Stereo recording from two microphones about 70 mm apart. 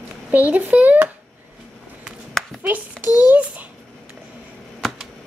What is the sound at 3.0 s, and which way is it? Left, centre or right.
Speech, left.